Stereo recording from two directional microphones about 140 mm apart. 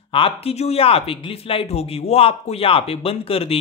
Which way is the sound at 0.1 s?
40° left (ahead or behind).